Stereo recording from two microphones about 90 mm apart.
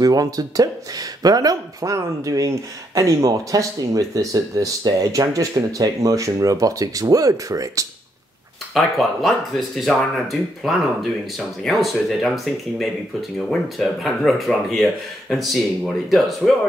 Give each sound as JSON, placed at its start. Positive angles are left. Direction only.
{"t": 0.0, "sound": "speech", "side_deg": -45}
{"t": 8.7, "sound": "speech", "side_deg": 0}
{"t": 13.5, "sound": "speech", "side_deg": 0}